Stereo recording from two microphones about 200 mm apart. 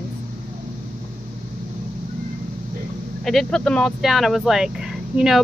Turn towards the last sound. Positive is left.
turn(degrees=0)  # may be behind; listen again after turning